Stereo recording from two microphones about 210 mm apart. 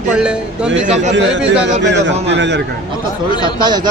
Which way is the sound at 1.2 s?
60° right (ahead or behind).